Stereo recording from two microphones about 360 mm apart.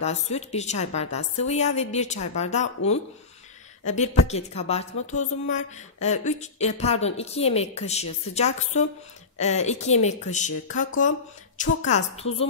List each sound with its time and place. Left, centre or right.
0.0 s a woman's voice: centre
3.8 s a woman's voice: centre